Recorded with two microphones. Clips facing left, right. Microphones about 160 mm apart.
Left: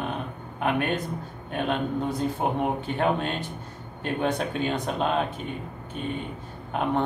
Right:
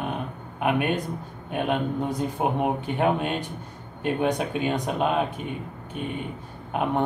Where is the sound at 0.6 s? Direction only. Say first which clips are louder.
Right 2 dB; 10° right (ahead or behind).